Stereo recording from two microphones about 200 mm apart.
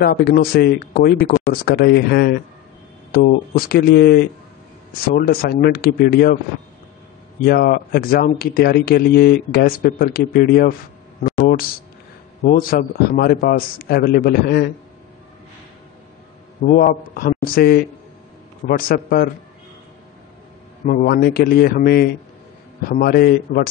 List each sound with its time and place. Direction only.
0.0 s speech: 50° left (ahead or behind)
7.4 s speech: 50° left (ahead or behind)
11.2 s a sound: 45° left (ahead or behind)
12.4 s speech: 45° left (ahead or behind)
16.6 s speech: 45° left (ahead or behind)
20.8 s speech: 45° left (ahead or behind)